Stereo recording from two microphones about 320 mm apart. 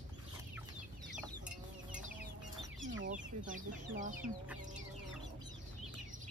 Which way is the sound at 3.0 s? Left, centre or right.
Right.